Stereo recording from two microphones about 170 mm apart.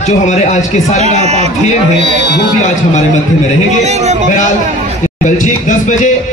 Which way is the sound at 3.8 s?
40° right (ahead or behind).